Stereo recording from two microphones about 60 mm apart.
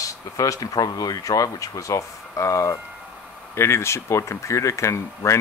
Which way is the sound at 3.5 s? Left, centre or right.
Left.